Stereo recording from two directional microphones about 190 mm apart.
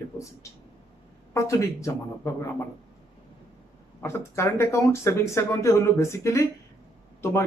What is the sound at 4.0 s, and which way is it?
Speech, 15° left (ahead or behind).